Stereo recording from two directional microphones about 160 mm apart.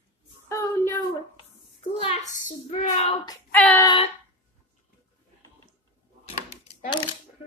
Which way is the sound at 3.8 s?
35° left (ahead or behind).